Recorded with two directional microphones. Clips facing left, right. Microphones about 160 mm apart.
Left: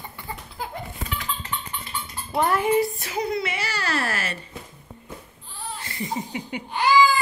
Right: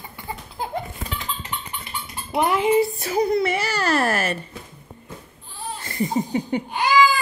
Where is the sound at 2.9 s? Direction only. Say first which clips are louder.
Right 6 dB; 35° right (ahead or behind).